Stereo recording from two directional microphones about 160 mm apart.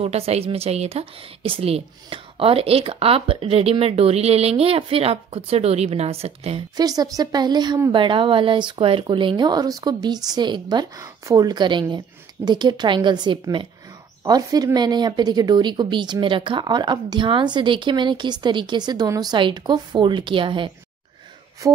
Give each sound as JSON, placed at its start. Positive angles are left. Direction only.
{"t": 0.0, "sound": "a woman's voice", "side_deg": -40}
{"t": 6.8, "sound": "speech", "side_deg": -25}